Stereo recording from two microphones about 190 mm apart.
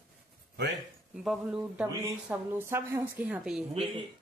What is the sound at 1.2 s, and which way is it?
Speech, 5° right (ahead or behind).